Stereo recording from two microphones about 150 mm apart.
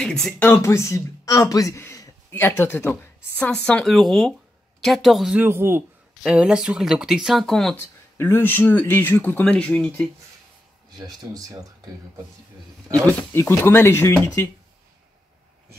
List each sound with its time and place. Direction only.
0.0 s speech: 5° left (ahead or behind)
0.5 s speech: 20° left (ahead or behind); by 5.4 s centre (ahead or behind)
5.4 s speech: 15° right (ahead or behind); by 7.7 s centre (ahead or behind)
7.7 s speech: 15° left (ahead or behind)
11.0 s speech: 25° right (ahead or behind)
13.0 s speech: 15° left (ahead or behind)